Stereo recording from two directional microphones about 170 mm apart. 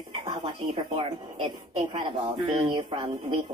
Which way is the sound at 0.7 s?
30° right (ahead or behind).